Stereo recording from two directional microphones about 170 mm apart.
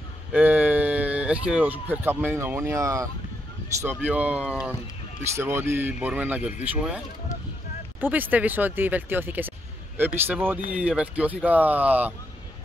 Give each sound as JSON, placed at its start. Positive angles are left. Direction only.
{"t": 0.3, "sound": "speech", "side_deg": -10}
{"t": 4.0, "sound": "speech", "side_deg": -10}
{"t": 8.0, "sound": "speech", "side_deg": -10}